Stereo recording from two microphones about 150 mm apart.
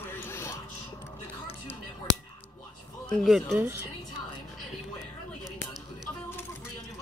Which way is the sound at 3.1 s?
Centre (ahead or behind).